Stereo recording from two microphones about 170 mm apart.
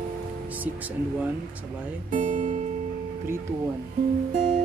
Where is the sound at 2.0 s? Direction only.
50° right (ahead or behind).